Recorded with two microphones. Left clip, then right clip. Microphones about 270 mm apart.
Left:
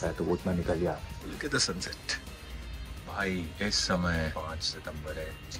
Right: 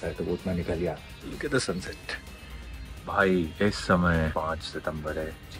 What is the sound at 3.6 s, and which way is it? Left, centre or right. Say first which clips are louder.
Speech: right 5 dB; centre.